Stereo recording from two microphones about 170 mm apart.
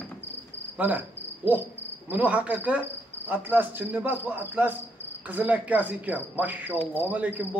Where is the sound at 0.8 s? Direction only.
10° right (ahead or behind).